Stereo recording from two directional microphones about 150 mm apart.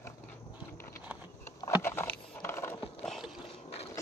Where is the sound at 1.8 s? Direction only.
15° left (ahead or behind).